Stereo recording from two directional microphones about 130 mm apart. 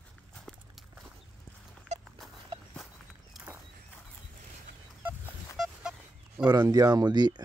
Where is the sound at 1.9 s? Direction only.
60° right (ahead or behind).